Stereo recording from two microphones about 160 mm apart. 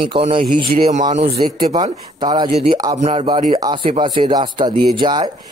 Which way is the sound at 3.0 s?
40° right (ahead or behind).